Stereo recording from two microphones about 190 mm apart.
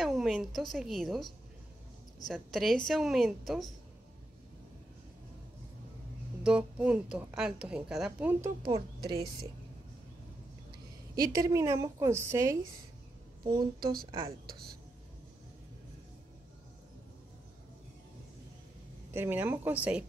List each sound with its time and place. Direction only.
0.0 s a woman's voice: centre (ahead or behind)
6.4 s a woman's voice: 5° right (ahead or behind)
11.1 s a woman's voice: 20° right (ahead or behind)
14.4 s a woman's voice: 50° right (ahead or behind)
19.1 s a woman's voice: 10° right (ahead or behind)